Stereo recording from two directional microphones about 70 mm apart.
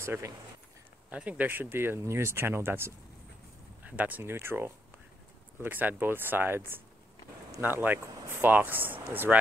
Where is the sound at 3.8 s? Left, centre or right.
Right.